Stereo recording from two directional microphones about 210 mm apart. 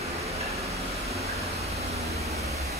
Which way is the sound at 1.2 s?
30° right (ahead or behind).